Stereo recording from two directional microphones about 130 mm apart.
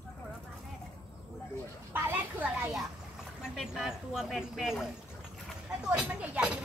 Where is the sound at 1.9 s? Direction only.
15° right (ahead or behind).